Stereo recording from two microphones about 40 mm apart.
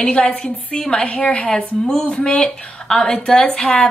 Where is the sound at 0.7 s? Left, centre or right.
Centre.